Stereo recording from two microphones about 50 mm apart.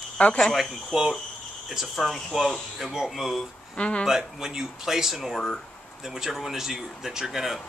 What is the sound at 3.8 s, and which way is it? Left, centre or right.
Speech, centre.